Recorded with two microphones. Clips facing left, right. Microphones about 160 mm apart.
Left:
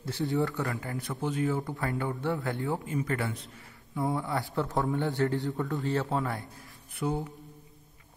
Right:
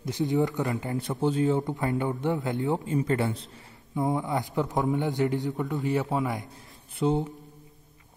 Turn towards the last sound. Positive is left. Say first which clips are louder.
# right 6 dB
turn(degrees=-25)  # may be behind; listen again after turning